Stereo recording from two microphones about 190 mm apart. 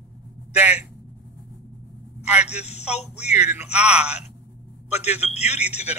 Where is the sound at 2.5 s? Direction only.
35° left (ahead or behind).